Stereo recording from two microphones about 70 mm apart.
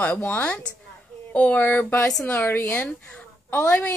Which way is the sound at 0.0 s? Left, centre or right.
Left.